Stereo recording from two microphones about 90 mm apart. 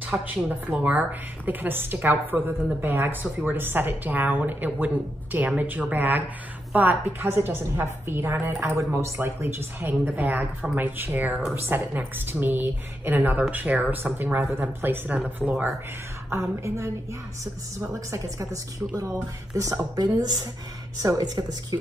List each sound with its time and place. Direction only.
0.1 s a woman's voice: 15° right (ahead or behind)
16.3 s speech: 30° right (ahead or behind)